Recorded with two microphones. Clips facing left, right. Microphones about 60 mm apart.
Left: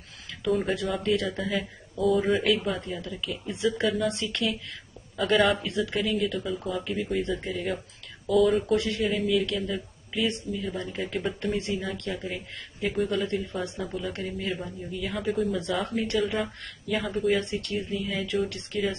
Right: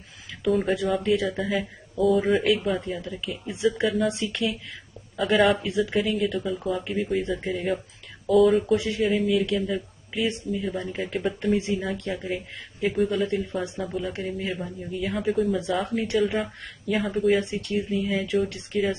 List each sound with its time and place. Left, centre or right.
0.5 s speech: centre
3.0 s speech: centre
3.8 s speech: centre
4.1 s speech: centre
5.7 s speech: centre
17.4 s speech: centre